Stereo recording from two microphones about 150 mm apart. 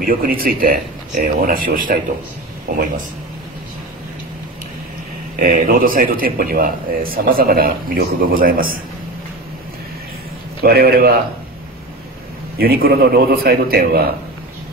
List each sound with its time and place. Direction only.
0.0 s a man's voice: 70° right (ahead or behind)
5.4 s a man's voice: 70° right (ahead or behind)
10.6 s a man's voice: 90° right
12.5 s a man's voice: 90° right